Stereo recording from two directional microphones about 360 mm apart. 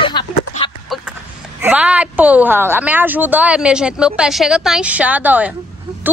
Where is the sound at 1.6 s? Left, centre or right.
Centre.